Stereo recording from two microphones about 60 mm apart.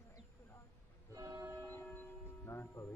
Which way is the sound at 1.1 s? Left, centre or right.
Right.